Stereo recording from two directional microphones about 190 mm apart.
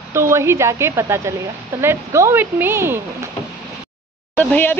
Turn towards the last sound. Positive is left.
turn(degrees=10)  # may be behind; listen again after turning